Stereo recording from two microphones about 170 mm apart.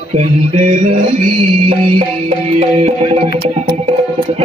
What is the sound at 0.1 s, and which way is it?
Music, 40° right (ahead or behind).